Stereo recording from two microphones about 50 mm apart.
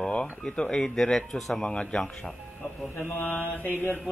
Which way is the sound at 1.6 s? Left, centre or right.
Left.